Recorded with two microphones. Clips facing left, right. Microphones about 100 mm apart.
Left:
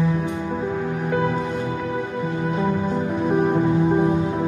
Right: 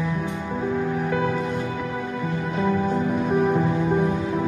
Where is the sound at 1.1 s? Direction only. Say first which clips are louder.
Left 5 dB; 30° left (ahead or behind).